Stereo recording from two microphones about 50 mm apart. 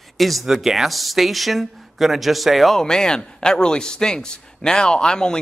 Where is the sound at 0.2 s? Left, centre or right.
Centre.